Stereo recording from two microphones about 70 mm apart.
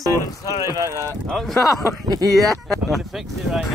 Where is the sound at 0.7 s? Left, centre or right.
Right.